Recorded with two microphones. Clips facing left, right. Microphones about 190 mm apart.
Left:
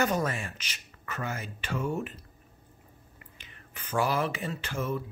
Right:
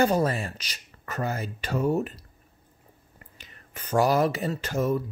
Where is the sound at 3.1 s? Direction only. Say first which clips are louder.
Right 4 dB; 40° right (ahead or behind).